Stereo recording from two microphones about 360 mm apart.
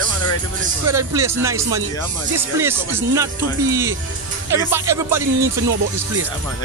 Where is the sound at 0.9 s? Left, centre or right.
Centre.